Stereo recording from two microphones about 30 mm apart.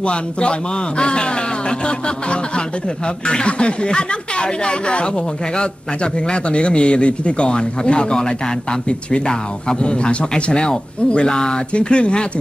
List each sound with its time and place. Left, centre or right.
0.0 s speech: left